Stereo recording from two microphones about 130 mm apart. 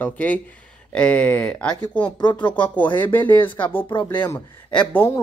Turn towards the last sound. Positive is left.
turn(degrees=20)  # may be behind; listen again after turning